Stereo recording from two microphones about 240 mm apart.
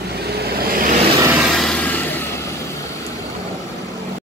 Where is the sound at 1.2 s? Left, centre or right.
Centre.